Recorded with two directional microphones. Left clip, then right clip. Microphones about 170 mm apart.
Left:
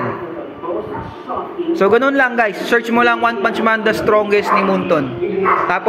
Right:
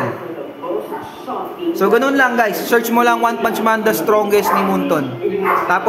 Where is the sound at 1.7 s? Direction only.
15° left (ahead or behind).